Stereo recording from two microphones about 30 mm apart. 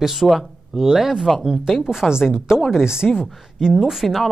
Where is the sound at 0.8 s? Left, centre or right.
Centre.